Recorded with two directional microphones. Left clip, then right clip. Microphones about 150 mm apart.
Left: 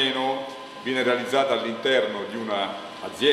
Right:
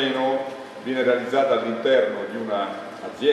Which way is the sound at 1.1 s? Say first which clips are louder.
Right 3 dB; 20° left (ahead or behind).